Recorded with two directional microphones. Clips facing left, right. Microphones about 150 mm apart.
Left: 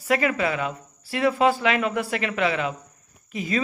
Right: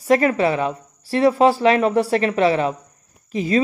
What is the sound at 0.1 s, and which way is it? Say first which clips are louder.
Speech: right 6 dB; 35° right (ahead or behind).